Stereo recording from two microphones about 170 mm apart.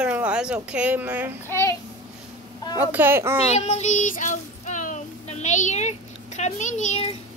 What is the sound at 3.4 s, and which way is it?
Child singing, 40° left (ahead or behind).